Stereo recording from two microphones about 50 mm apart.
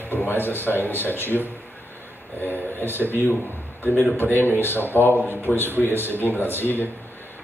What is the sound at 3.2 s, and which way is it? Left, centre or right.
Speech, left.